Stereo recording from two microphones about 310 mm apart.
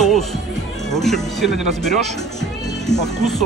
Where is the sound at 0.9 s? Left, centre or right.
Centre.